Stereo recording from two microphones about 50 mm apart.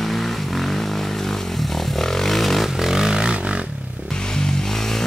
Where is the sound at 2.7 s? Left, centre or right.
Centre.